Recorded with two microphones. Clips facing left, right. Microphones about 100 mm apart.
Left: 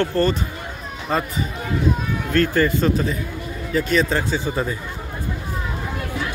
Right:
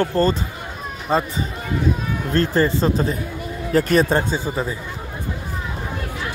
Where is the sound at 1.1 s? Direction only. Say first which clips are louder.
Right 3 dB; 25° right (ahead or behind).